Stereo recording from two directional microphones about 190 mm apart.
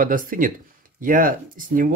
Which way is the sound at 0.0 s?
45° right (ahead or behind).